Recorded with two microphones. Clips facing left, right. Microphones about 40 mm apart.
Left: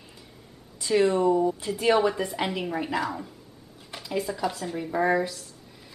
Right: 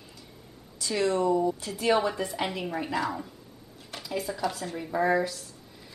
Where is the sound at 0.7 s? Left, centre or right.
Centre.